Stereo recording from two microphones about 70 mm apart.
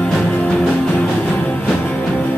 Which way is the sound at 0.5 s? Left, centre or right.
Centre.